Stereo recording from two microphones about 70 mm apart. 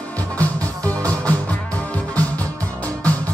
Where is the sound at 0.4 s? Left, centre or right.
Left.